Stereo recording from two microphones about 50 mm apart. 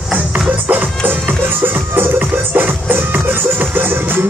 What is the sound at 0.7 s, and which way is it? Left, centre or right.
Music, right.